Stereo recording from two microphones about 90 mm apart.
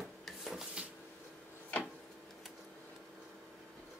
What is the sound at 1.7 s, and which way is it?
Tick-tock, 15° left (ahead or behind).